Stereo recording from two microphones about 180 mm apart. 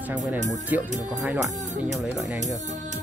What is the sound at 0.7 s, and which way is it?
Speech, 10° right (ahead or behind).